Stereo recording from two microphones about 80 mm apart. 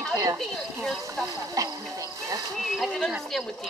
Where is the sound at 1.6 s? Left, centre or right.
Right.